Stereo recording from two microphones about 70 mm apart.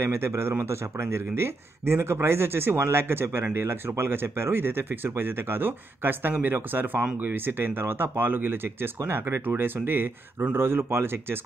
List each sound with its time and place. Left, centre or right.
0.0 s speech: right